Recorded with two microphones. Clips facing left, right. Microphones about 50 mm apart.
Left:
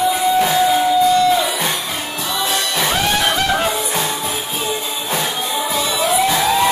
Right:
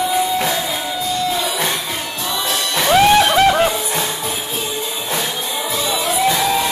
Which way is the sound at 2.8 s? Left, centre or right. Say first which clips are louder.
Right 8 dB; centre.